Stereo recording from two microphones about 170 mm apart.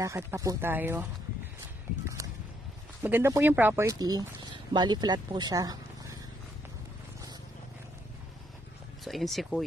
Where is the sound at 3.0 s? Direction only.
15° right (ahead or behind).